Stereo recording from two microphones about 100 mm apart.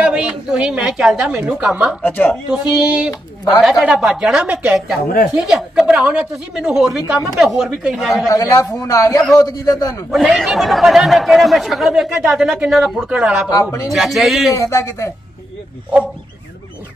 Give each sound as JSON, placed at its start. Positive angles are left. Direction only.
{"t": 0.0, "sound": "a woman's voice", "side_deg": -10}
{"t": 2.0, "sound": "a woman's voice", "side_deg": 20}
{"t": 2.5, "sound": "speech", "side_deg": -10}
{"t": 8.3, "sound": "speech", "side_deg": 35}
{"t": 10.1, "sound": "speech", "side_deg": 0}
{"t": 13.5, "sound": "speech", "side_deg": 35}
{"t": 13.9, "sound": "speech", "side_deg": 0}
{"t": 14.5, "sound": "speech", "side_deg": 30}